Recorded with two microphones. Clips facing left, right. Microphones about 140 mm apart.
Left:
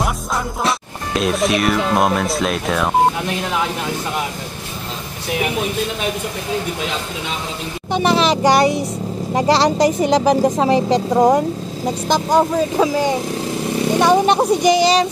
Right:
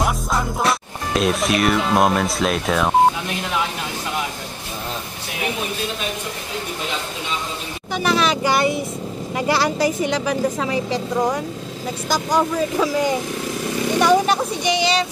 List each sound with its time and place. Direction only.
0.7 s speech: centre (ahead or behind)
7.9 s speech: 30° left (ahead or behind); by 11.4 s 45° left (ahead or behind)
12.1 s speech: 25° left (ahead or behind)
14.4 s speech: 40° left (ahead or behind)